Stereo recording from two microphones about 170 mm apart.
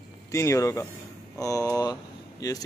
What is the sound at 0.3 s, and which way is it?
Speech, 15° left (ahead or behind).